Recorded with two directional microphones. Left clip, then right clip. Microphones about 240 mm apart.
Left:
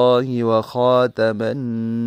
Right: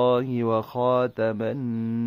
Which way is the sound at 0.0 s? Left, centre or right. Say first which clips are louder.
Left 6 dB; left.